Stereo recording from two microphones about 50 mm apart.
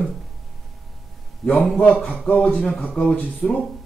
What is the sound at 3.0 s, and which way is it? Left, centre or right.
Speech, left.